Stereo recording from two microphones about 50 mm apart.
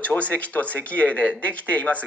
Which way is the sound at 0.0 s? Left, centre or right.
Left.